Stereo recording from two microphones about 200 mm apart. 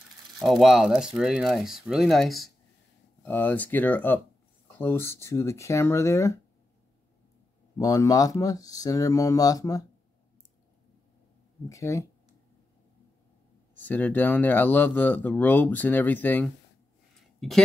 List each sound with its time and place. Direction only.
0.4 s speech: centre (ahead or behind); by 6.4 s 15° left (ahead or behind)
7.7 s speech: 15° left (ahead or behind)
11.7 s speech: 15° left (ahead or behind)
13.7 s speech: 10° left (ahead or behind)